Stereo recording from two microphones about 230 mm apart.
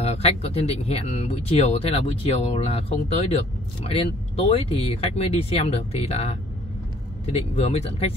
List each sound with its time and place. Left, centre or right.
0.0 s speech: left